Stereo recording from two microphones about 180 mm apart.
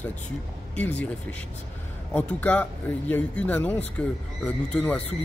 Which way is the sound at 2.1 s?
10° left (ahead or behind).